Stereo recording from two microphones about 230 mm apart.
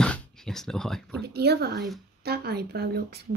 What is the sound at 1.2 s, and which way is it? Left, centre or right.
A woman's voice, right.